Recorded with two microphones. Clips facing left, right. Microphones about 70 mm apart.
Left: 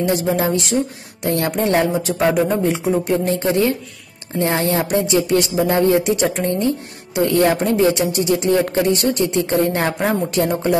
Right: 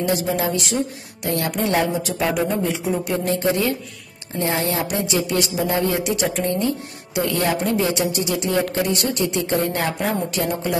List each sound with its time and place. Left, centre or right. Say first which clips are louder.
0.0 s speech: left 3 dB; left